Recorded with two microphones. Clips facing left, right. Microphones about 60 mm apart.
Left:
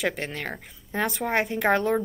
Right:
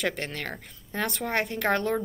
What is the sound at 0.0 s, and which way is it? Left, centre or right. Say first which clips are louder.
A woman's voice: left 2 dB; centre.